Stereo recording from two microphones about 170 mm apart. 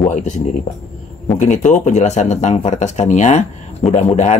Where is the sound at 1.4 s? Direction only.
45° left (ahead or behind).